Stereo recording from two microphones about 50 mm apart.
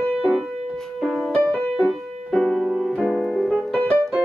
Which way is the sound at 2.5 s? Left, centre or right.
Centre.